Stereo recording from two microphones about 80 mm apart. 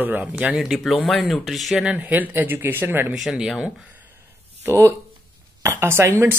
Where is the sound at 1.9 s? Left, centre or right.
Centre.